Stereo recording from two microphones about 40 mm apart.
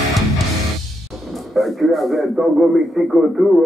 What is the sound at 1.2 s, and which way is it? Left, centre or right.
A man's voice, centre.